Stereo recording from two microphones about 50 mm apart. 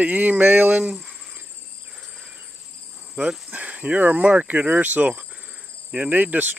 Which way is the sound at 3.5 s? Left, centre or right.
Right.